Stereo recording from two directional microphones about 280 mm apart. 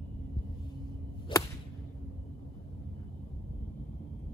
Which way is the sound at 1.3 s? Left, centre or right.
Centre.